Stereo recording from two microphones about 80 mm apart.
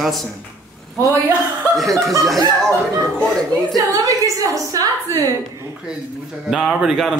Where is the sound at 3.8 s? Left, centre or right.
Right.